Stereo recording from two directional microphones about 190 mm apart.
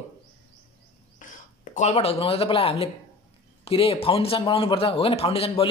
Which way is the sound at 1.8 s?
35° left (ahead or behind).